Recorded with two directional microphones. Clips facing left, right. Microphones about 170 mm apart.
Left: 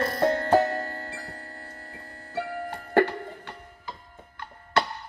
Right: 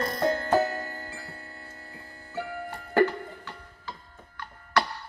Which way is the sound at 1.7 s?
65° left (ahead or behind).